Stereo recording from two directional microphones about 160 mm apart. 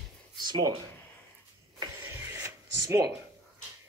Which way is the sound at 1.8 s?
15° right (ahead or behind).